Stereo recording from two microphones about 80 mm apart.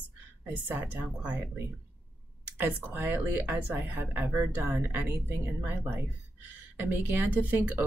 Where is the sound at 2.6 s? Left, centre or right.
Right.